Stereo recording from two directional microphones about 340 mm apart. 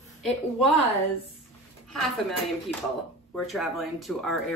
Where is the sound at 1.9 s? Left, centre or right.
Centre.